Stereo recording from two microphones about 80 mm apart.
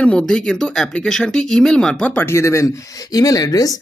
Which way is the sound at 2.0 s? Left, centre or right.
Left.